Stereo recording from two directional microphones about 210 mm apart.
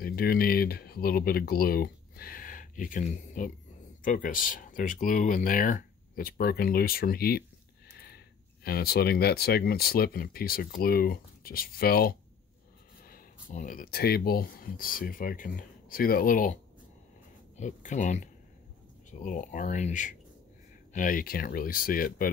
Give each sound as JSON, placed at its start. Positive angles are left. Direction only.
{"t": 0.0, "sound": "speech", "side_deg": 45}
{"t": 8.6, "sound": "speech", "side_deg": 45}
{"t": 17.6, "sound": "speech", "side_deg": 35}